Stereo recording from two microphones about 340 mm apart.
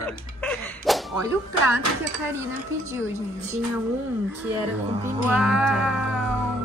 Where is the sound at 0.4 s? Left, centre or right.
Centre.